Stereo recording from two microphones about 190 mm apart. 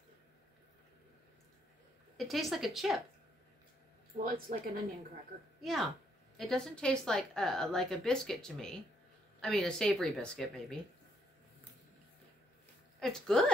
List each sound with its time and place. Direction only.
2.1 s a woman's voice: centre (ahead or behind)
4.2 s speech: 50° right (ahead or behind)
5.6 s a woman's voice: centre (ahead or behind)
13.0 s a woman's voice: centre (ahead or behind)